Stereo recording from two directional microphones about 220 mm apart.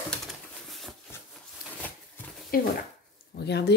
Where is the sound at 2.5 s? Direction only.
40° left (ahead or behind).